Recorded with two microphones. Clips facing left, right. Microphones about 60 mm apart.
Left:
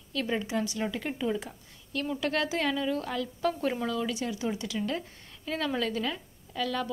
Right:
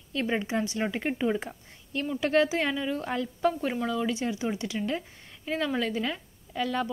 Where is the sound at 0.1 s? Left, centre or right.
Right; by 4.1 s centre.